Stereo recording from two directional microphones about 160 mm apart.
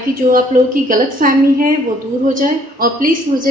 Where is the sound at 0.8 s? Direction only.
60° right (ahead or behind).